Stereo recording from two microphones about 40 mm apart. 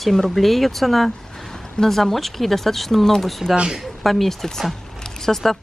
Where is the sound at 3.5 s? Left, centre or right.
Centre.